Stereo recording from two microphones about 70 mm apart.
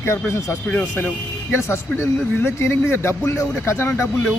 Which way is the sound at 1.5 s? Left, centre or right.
Left.